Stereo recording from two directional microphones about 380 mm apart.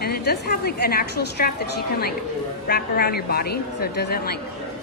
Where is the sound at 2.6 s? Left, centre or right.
Left.